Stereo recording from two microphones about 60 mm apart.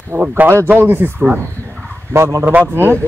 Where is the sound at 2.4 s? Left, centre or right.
Right.